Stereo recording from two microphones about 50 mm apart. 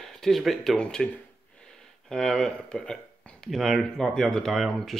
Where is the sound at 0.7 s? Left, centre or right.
Centre.